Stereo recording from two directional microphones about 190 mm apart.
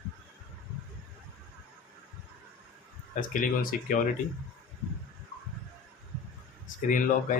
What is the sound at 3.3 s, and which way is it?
Speech, 45° left (ahead or behind).